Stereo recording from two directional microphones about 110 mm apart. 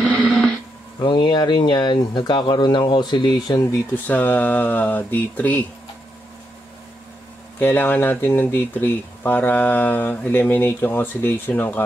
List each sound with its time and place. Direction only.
0.2 s radio: centre (ahead or behind)
1.0 s speech: 45° left (ahead or behind)
3.9 s speech: 15° left (ahead or behind)
7.6 s speech: 20° left (ahead or behind)